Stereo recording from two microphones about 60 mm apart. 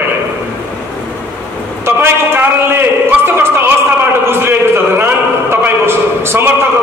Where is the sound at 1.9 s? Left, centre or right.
Right.